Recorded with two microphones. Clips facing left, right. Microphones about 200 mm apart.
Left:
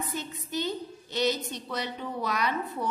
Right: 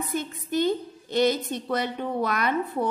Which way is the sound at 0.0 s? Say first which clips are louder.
Right 5 dB; 50° right (ahead or behind).